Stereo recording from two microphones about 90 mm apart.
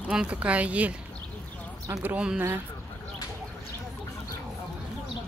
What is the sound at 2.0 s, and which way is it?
Speech, 10° right (ahead or behind).